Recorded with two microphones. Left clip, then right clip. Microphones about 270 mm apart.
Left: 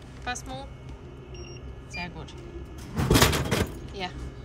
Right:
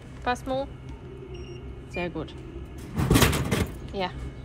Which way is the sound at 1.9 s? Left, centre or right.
Centre.